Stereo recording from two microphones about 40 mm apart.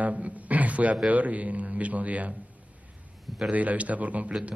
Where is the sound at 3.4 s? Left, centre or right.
Right.